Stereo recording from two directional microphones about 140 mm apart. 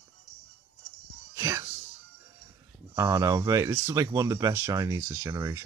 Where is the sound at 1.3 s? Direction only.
20° right (ahead or behind).